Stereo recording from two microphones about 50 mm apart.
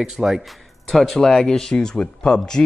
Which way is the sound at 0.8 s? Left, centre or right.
Centre.